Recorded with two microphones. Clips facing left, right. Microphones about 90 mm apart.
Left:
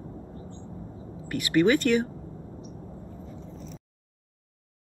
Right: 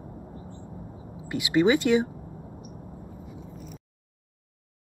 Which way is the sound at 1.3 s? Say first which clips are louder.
Even; 15° right (ahead or behind).